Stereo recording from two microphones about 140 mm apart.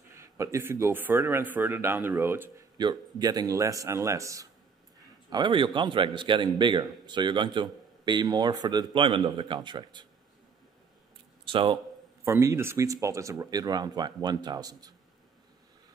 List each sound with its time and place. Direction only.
0.1 s speech: 20° right (ahead or behind)
2.8 s speech: 30° right (ahead or behind)
5.3 s a man's voice: 35° right (ahead or behind)
11.4 s speech: 40° right (ahead or behind)
12.3 s speech: 20° right (ahead or behind)